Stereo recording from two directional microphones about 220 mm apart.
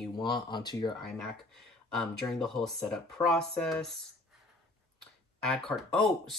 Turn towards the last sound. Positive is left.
turn(degrees=0)  # may be behind; listen again after turning